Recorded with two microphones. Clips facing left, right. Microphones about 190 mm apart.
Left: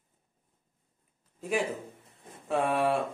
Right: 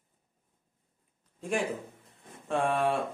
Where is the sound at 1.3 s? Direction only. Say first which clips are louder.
Left 1 dB; 5° left (ahead or behind).